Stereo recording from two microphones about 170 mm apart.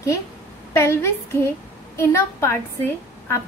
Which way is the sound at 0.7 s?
15° left (ahead or behind).